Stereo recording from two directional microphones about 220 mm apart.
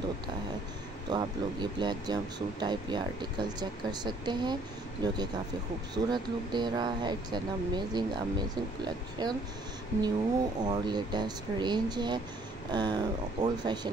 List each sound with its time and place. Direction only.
1.1 s speech: 20° right (ahead or behind)
10.6 s speech: 20° right (ahead or behind)